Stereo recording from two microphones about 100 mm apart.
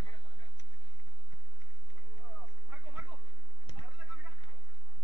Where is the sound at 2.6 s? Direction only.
15° right (ahead or behind).